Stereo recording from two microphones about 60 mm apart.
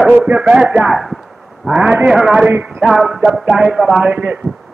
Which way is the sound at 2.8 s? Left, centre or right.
Centre.